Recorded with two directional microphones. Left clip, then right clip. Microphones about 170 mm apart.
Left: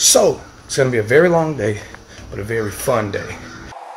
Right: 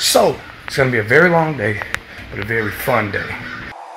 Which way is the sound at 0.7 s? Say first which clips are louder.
Right 1 dB; 15° left (ahead or behind).